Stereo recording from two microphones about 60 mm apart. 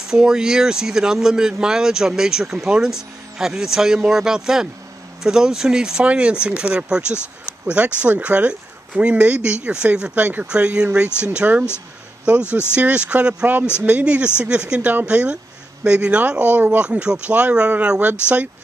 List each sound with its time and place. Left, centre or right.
0.1 s speech: centre
7.4 s a sound: centre
8.0 s speech: right
10.1 s speech: right